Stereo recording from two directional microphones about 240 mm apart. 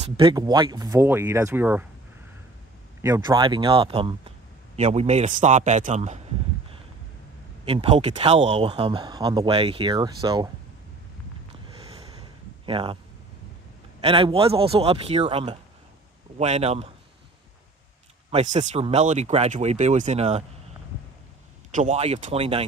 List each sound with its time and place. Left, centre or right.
0.0 s speech: centre
3.0 s speech: centre
7.6 s speech: right
12.6 s speech: right
14.0 s speech: right
18.3 s speech: right
21.7 s speech: right